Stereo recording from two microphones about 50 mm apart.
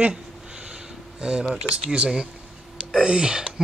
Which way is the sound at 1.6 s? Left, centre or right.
Right.